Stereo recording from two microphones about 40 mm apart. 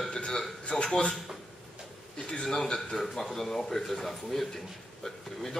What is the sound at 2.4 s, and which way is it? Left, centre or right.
Speech, centre.